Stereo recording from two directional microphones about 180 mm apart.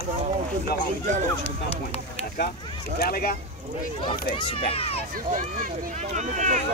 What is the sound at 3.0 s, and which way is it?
Speech, 55° left (ahead or behind).